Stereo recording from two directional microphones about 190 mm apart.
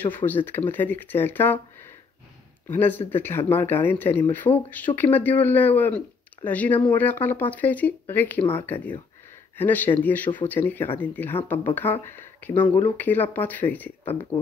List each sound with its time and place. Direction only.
0.0 s speech: 10° left (ahead or behind)
2.7 s speech: 10° left (ahead or behind)